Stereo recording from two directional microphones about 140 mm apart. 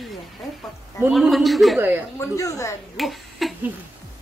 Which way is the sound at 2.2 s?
25° left (ahead or behind).